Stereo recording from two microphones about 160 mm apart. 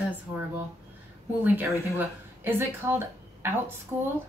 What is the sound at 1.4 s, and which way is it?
Speech, 10° right (ahead or behind).